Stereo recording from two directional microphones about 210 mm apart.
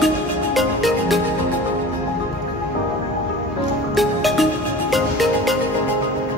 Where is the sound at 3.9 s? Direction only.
Centre (ahead or behind).